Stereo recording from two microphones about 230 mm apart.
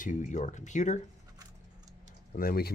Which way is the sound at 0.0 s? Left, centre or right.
Left.